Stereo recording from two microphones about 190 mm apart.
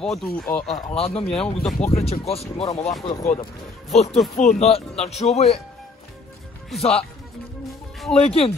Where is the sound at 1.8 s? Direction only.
30° left (ahead or behind).